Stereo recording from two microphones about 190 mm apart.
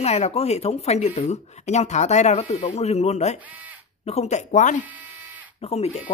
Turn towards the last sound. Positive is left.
turn(degrees=30)  # may be behind; listen again after turning